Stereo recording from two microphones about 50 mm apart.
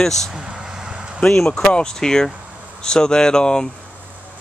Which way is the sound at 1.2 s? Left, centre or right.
Centre.